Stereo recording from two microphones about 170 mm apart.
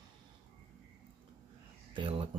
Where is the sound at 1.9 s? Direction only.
30° right (ahead or behind).